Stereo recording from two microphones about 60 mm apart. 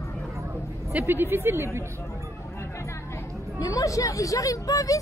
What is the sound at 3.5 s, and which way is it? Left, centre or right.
Speech, left.